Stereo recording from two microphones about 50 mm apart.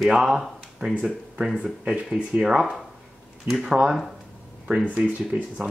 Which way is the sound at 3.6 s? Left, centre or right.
Centre.